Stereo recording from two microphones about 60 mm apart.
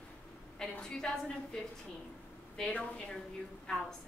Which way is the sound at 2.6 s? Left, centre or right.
Centre.